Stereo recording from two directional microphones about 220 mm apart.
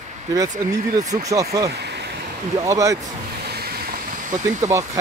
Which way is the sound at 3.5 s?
45° right (ahead or behind).